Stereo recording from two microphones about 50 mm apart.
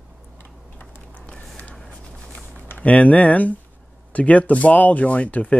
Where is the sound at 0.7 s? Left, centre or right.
Left.